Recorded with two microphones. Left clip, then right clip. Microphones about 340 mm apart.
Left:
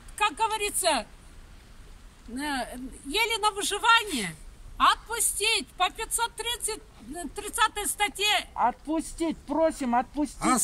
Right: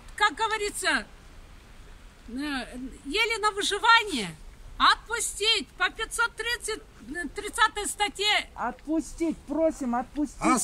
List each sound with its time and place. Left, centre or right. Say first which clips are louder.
0.1 s speech: right 1 dB; centre
2.3 s speech: left 2 dB; centre
8.5 s speech: left 4 dB; left